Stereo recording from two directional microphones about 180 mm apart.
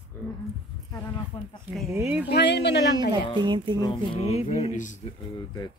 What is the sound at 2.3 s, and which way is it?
Speech, 70° left (ahead or behind).